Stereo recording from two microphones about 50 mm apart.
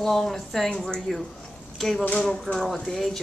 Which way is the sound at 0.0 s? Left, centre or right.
Centre.